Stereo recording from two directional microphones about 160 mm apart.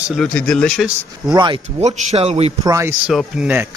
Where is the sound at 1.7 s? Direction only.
45° right (ahead or behind).